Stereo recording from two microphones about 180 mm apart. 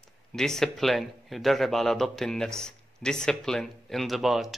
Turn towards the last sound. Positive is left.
turn(degrees=0)  # may be behind; listen again after turning